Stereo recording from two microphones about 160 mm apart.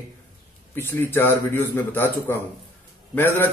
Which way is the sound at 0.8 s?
15° left (ahead or behind).